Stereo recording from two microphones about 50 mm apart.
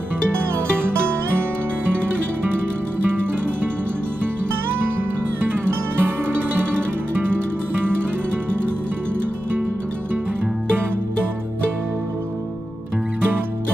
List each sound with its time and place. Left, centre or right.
5.7 s music: right